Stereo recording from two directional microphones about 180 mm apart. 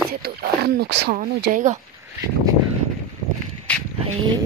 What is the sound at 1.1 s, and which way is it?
Speech, 50° right (ahead or behind).